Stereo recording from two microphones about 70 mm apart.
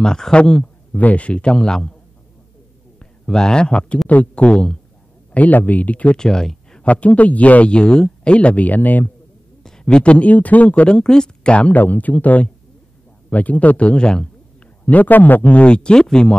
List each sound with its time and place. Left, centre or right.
0.0 s speech: centre
3.0 s speech: centre
5.3 s speech: left; by 6.9 s centre
6.9 s speech: centre
9.6 s speech: centre
14.9 s speech: left